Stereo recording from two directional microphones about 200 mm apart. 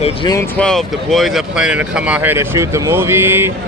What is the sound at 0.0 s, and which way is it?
Speech, 25° left (ahead or behind).